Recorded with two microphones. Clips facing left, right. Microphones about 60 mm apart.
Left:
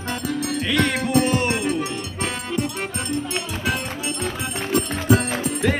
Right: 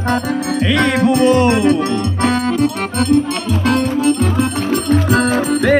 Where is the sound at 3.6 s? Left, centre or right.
Right.